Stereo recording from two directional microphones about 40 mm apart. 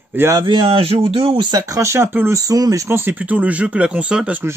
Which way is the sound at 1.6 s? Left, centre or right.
Right.